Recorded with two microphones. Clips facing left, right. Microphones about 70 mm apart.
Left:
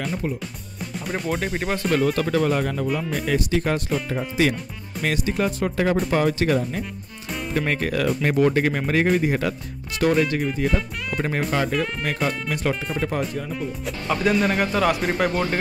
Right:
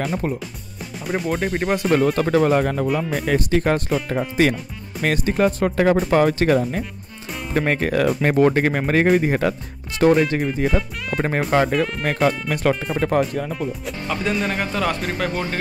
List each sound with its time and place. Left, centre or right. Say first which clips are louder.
0.0 s speech: right 3 dB; right
0.9 s speech: right 3 dB; centre
2.1 s speech: right 4 dB; right
5.0 s speech: right 4 dB; right
7.5 s speech: right 4 dB; right
10.2 s speech: right 2 dB; right
11.1 s speech: right 5 dB; right
14.2 s speech: left 3 dB; centre